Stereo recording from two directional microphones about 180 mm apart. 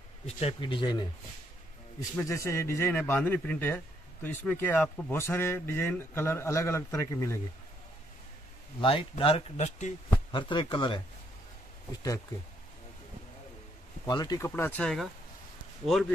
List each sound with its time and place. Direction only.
0.4 s a man's voice: 30° left (ahead or behind); by 7.3 s 15° left (ahead or behind)
8.8 s speech: 30° left (ahead or behind)
10.0 s speech: 25° left (ahead or behind)
14.0 s a man's voice: 20° left (ahead or behind); by 16.1 s centre (ahead or behind)